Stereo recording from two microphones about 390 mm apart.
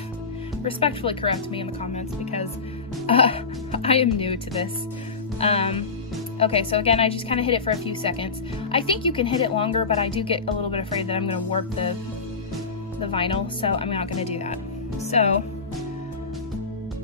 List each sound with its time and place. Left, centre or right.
0.7 s a woman's voice: centre
5.4 s a woman's voice: centre
13.1 s a woman's voice: centre